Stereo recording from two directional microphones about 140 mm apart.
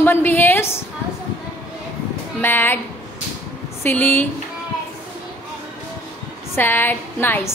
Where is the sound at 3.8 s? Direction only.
15° left (ahead or behind).